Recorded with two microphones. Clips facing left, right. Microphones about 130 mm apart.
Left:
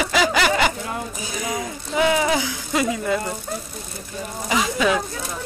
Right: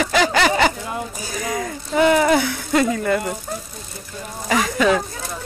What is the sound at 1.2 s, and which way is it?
Speech, 15° left (ahead or behind).